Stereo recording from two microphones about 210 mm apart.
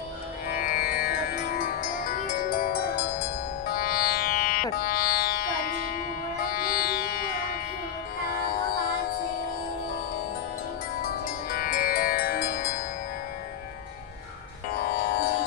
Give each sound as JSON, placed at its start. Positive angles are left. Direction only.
{"t": 0.5, "sound": "music", "side_deg": 40}
{"t": 11.0, "sound": "music", "side_deg": 45}
{"t": 14.7, "sound": "music", "side_deg": 40}